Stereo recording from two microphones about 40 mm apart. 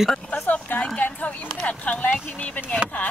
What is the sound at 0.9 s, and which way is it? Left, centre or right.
Speech, left.